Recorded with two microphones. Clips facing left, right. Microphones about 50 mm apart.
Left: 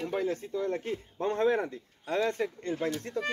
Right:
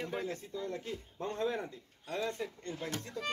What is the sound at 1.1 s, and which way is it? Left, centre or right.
A man's voice, left.